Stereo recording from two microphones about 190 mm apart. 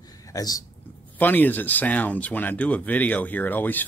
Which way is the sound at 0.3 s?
20° left (ahead or behind).